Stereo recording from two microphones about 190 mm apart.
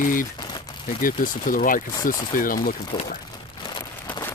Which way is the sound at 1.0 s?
45° left (ahead or behind).